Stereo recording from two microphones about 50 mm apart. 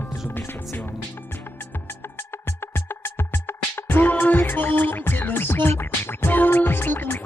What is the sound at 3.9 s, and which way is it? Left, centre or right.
Music, left.